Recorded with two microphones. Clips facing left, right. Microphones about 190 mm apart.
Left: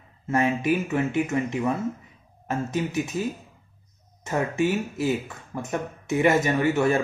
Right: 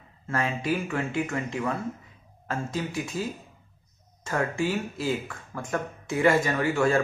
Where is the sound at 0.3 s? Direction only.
20° left (ahead or behind).